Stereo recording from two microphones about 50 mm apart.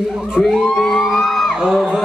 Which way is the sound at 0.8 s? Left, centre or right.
Centre.